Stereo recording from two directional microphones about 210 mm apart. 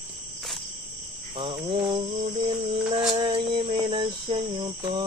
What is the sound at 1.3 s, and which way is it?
Cricket, 25° right (ahead or behind).